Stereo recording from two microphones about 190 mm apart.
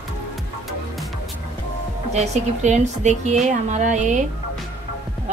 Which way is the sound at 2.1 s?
35° right (ahead or behind).